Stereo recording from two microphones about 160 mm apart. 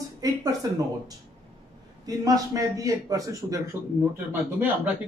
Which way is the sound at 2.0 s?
20° right (ahead or behind).